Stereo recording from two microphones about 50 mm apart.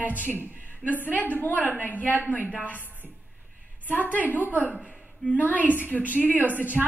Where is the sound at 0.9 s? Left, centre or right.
Left.